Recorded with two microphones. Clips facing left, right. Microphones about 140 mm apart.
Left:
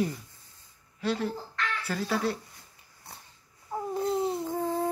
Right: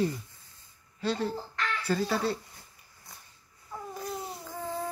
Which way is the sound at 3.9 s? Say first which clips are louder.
Left 11 dB; 25° left (ahead or behind).